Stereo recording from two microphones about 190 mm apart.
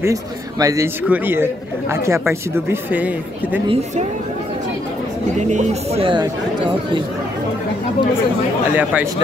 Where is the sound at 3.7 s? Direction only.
35° right (ahead or behind).